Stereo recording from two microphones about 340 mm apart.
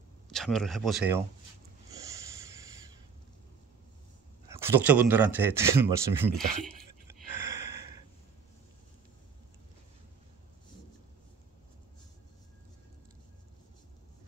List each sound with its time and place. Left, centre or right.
0.3 s speech: centre
4.5 s speech: centre